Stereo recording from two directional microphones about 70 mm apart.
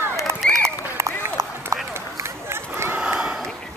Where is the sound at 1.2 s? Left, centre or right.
Right.